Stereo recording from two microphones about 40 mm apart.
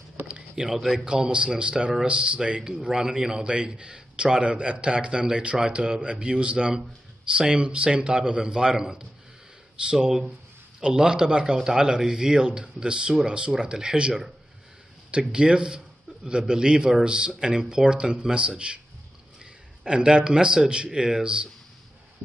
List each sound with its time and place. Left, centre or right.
0.6 s a man's voice: centre